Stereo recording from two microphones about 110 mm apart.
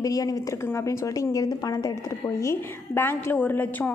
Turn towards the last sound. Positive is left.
turn(degrees=15)  # may be behind; listen again after turning